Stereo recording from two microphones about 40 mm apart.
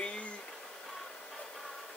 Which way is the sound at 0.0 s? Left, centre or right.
Left.